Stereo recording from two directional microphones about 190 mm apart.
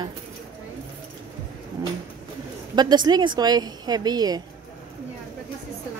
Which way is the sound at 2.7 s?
20° right (ahead or behind).